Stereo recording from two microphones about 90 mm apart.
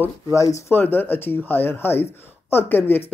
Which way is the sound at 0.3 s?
35° left (ahead or behind).